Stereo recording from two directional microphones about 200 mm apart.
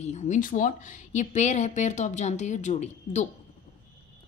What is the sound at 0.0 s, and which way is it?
Speech, 35° left (ahead or behind).